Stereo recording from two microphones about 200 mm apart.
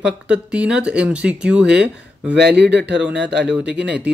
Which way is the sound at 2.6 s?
60° right (ahead or behind).